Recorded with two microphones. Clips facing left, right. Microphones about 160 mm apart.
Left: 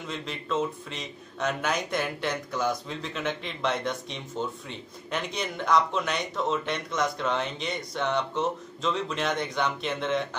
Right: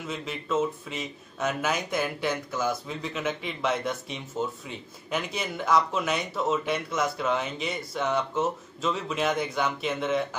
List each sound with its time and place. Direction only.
0.0 s speech: 5° right (ahead or behind)